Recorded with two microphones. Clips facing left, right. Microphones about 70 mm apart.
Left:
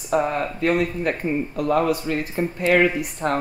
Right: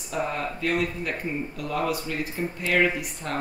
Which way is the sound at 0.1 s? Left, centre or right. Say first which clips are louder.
Left 7 dB; left.